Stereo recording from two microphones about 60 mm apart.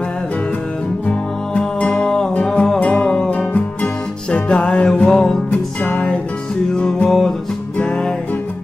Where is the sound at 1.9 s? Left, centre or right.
Centre.